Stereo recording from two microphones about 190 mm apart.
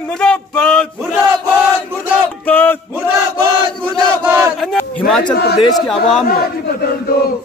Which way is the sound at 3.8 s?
10° right (ahead or behind).